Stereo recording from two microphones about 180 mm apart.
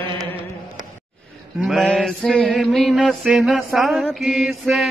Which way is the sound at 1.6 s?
Centre (ahead or behind).